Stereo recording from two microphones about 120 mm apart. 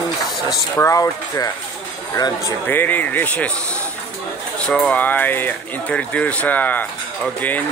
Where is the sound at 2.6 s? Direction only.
15° left (ahead or behind).